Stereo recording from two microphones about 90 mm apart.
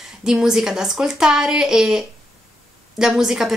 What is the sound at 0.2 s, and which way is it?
A woman's voice, 5° right (ahead or behind).